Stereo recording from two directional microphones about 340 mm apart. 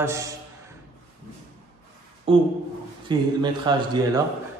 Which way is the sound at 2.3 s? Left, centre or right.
Centre.